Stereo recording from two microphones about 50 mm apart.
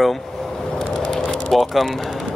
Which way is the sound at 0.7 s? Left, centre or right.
Centre.